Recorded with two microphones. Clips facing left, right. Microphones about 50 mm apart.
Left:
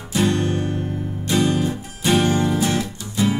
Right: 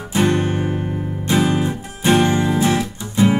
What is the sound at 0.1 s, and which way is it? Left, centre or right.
Music, right.